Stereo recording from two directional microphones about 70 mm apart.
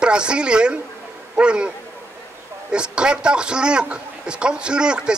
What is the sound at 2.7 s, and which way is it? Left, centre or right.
A man's voice, centre.